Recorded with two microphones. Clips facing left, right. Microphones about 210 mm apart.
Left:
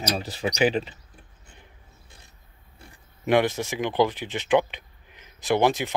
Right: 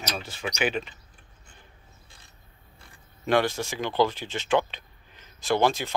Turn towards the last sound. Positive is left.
turn(degrees=20)  # may be behind; listen again after turning